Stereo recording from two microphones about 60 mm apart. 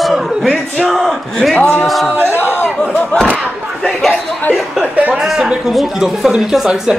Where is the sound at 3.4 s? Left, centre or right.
Centre.